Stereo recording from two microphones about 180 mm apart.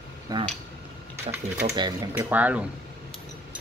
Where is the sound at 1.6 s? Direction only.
25° right (ahead or behind).